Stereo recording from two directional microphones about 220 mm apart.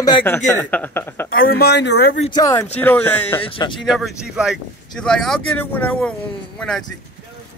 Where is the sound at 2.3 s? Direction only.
15° left (ahead or behind).